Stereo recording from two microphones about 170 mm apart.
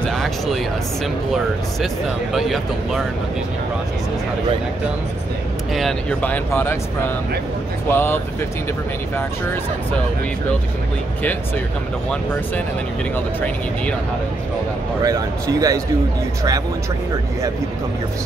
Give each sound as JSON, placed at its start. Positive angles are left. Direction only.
{"t": 0.0, "sound": "music", "side_deg": 0}
{"t": 2.3, "sound": "speech", "side_deg": 0}
{"t": 5.8, "sound": "speech", "side_deg": 5}
{"t": 7.9, "sound": "speech", "side_deg": 15}
{"t": 13.1, "sound": "speech", "side_deg": 10}
{"t": 15.0, "sound": "speech", "side_deg": -20}